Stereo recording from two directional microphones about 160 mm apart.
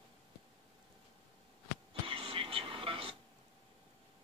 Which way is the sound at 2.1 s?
35° right (ahead or behind).